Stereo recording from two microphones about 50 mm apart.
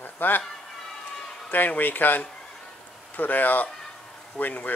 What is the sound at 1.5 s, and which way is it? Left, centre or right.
Speech, left.